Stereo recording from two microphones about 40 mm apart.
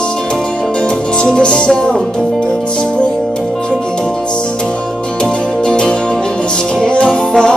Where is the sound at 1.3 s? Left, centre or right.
Left.